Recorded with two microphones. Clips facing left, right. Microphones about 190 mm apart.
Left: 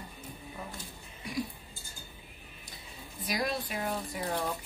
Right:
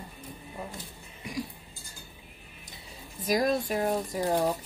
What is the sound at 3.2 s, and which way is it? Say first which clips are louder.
A woman's voice: right 7 dB; 45° right (ahead or behind).